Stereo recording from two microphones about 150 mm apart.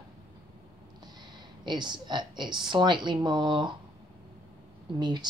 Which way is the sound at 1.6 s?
30° right (ahead or behind).